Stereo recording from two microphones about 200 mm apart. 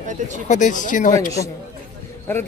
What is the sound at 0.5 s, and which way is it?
Speech, 40° left (ahead or behind).